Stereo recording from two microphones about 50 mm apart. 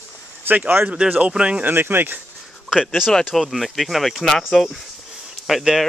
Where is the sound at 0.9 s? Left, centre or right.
Right.